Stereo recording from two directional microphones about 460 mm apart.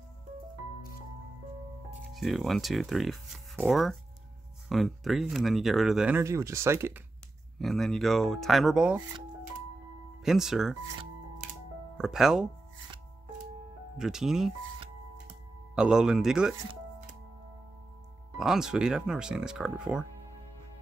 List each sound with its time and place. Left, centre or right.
2.0 s speech: centre
10.2 s speech: centre
12.0 s speech: centre
13.9 s speech: centre
15.7 s speech: centre
18.4 s speech: centre